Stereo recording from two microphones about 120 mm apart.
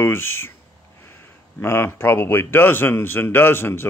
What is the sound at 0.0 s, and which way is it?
Speech, 20° left (ahead or behind).